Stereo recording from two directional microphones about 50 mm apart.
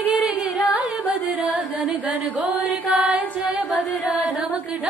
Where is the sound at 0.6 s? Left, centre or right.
Right.